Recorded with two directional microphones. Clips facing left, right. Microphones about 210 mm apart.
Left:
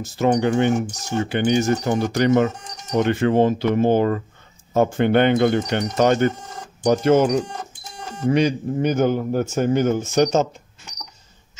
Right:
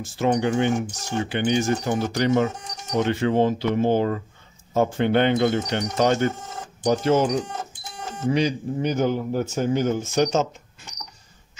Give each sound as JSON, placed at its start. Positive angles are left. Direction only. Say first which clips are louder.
{"t": 0.0, "sound": "a man's voice", "louder": "left 3 dB", "side_deg": 45}